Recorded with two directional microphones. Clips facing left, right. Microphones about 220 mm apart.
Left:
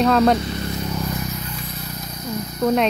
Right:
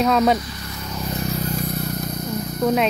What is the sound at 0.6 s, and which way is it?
Vehicle, 25° left (ahead or behind).